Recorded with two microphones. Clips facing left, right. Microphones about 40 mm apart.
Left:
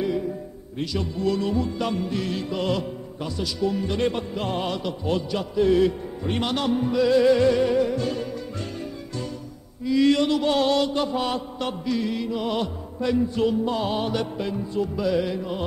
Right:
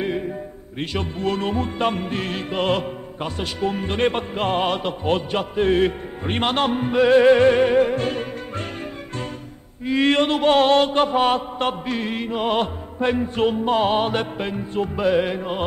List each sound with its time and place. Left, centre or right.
0.0 s a sound: right
0.7 s music: right
9.8 s music: right